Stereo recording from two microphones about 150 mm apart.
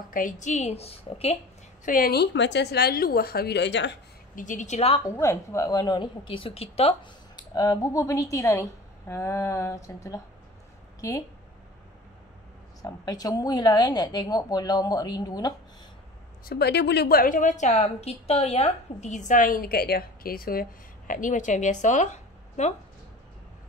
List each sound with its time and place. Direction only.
0.1 s a woman's voice: 65° left (ahead or behind); by 1.4 s 40° left (ahead or behind)
1.9 s a woman's voice: 80° left
4.4 s a woman's voice: 55° left (ahead or behind)
5.0 s a woman's voice: 20° left (ahead or behind); by 7.1 s 40° left (ahead or behind)
7.5 s a woman's voice: 25° left (ahead or behind)
12.8 s a woman's voice: 25° left (ahead or behind)
16.4 s a woman's voice: 90° left
21.1 s a woman's voice: 60° left (ahead or behind)